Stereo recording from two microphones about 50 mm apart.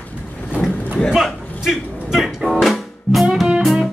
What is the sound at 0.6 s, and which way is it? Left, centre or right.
Vehicle, left.